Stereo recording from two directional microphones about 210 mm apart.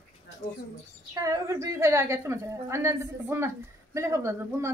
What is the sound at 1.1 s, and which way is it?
A woman's voice, 15° right (ahead or behind).